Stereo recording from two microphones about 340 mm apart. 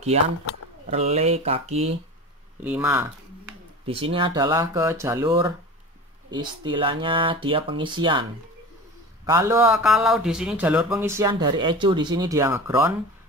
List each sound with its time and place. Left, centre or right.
0.8 s speech: centre
2.6 s speech: centre